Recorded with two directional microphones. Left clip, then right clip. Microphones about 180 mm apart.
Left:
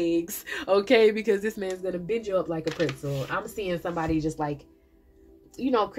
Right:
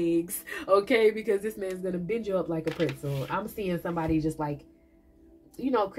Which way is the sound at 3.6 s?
45° left (ahead or behind).